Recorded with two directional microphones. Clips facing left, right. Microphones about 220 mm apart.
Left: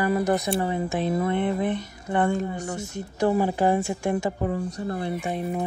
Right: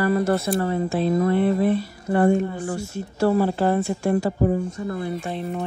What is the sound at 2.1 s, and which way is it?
Speech, 40° right (ahead or behind).